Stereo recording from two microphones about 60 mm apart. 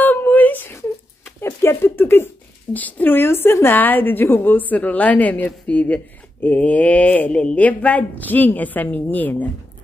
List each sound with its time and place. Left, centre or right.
0.0 s whimper: left
1.4 s a sound: left
2.7 s a woman's voice: left